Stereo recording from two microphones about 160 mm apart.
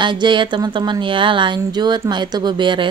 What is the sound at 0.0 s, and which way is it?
A woman's voice, 30° right (ahead or behind).